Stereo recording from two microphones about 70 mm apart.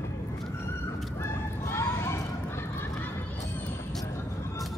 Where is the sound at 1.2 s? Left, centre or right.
Left.